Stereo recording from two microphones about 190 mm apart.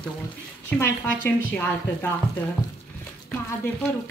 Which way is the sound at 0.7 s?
10° left (ahead or behind).